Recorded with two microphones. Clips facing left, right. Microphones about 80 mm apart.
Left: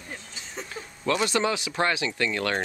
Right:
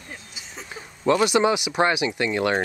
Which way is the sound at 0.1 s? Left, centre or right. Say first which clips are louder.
Left 1 dB; centre.